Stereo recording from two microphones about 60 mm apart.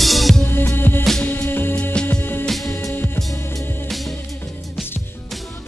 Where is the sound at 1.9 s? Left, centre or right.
Centre.